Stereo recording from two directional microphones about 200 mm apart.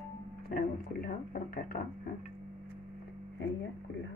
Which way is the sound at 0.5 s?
45° left (ahead or behind).